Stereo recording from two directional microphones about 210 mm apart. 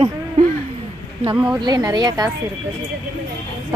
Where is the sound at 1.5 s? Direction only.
20° right (ahead or behind).